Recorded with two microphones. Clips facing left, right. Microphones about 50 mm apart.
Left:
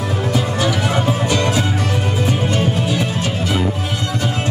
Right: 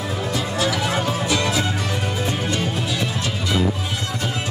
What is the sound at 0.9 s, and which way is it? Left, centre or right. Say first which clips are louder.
Music: left 4 dB; centre.